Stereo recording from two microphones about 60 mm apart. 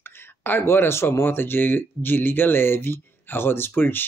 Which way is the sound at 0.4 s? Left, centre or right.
Left.